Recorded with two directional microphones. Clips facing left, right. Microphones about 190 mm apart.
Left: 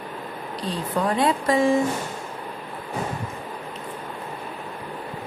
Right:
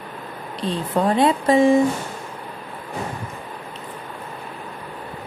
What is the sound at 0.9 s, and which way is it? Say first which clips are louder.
Speech: right 4 dB; 25° right (ahead or behind).